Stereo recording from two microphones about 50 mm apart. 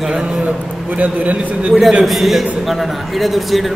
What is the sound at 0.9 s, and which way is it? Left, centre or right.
Speech, right.